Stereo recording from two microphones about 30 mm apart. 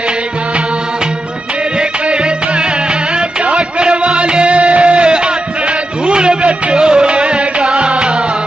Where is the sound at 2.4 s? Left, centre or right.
Right.